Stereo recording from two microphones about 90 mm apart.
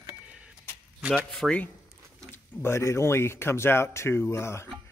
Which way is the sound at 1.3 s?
5° left (ahead or behind).